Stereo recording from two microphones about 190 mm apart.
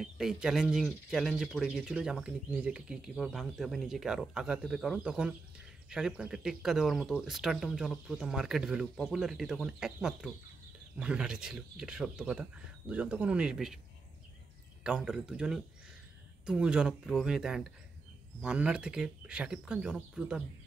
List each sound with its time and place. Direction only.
0.0 s speech: 5° right (ahead or behind)
14.8 s speech: 5° right (ahead or behind)